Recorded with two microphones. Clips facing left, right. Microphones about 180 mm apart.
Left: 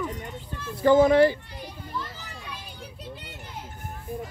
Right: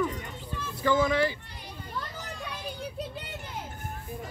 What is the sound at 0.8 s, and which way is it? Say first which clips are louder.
Speech: left 8 dB; 50° left (ahead or behind).